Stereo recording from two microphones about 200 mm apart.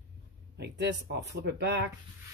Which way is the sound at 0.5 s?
55° right (ahead or behind).